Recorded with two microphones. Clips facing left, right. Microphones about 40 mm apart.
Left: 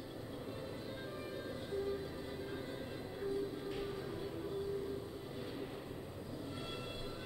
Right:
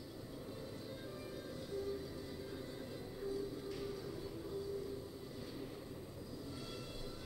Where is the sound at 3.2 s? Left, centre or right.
Left.